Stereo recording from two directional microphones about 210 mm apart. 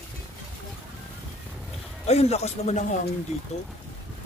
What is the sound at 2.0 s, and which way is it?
Speech, 30° left (ahead or behind).